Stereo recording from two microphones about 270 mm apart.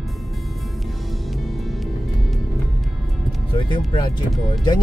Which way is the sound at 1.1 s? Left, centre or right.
Centre.